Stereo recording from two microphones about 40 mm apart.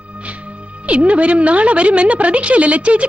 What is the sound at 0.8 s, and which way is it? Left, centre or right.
A woman's voice, right.